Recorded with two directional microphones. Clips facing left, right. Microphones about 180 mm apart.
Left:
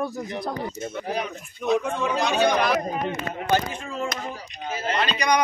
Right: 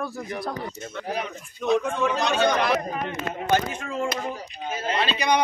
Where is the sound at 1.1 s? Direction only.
Centre (ahead or behind).